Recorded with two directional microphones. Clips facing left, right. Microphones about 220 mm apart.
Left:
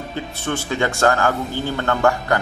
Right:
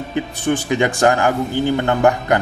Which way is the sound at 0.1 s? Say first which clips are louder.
Right 7 dB; 15° right (ahead or behind).